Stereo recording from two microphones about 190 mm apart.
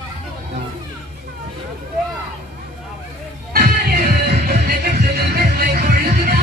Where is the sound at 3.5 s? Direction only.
55° right (ahead or behind).